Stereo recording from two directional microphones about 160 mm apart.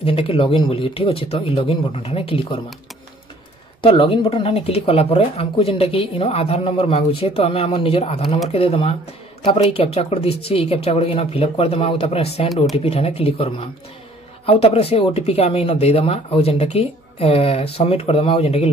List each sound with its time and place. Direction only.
0.0 s speech: 35° left (ahead or behind)
3.8 s speech: 35° left (ahead or behind)